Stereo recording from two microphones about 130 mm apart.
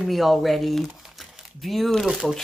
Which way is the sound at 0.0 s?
Centre (ahead or behind).